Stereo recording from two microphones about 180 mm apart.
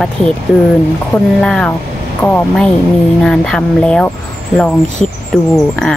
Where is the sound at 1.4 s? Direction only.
5° left (ahead or behind).